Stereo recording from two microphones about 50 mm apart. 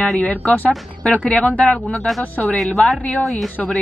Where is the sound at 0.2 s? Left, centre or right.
Left.